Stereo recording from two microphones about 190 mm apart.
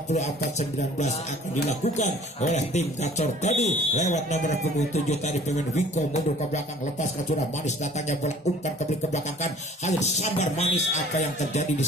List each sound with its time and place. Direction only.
0.1 s music: 35° left (ahead or behind)